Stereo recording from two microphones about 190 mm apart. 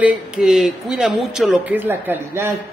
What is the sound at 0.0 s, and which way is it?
A man's voice, 5° right (ahead or behind).